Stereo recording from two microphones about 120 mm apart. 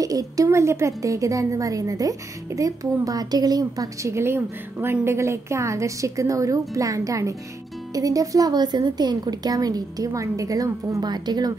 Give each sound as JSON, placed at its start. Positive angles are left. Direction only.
{"t": 0.0, "sound": "a woman's voice", "side_deg": -30}